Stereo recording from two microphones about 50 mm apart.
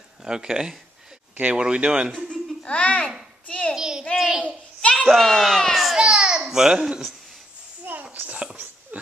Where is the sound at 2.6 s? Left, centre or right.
Left.